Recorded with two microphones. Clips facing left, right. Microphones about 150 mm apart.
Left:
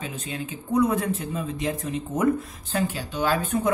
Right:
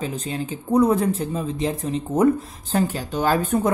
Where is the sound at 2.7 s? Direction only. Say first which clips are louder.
Right 4 dB; 40° right (ahead or behind).